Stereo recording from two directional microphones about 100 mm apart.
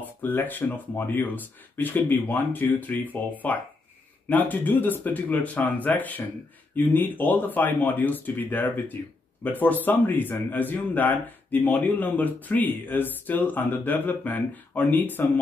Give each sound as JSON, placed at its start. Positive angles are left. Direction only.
{"t": 0.2, "sound": "speech", "side_deg": 20}